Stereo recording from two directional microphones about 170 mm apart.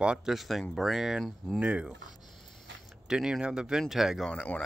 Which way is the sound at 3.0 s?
5° right (ahead or behind).